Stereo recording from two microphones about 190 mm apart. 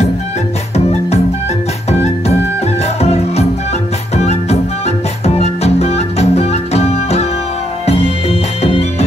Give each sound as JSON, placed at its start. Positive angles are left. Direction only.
{"t": 0.7, "sound": "music", "side_deg": 35}